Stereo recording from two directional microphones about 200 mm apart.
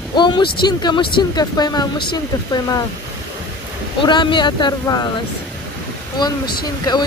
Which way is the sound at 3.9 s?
25° left (ahead or behind).